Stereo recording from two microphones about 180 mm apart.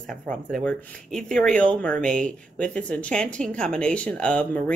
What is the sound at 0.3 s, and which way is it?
Speech, 50° right (ahead or behind).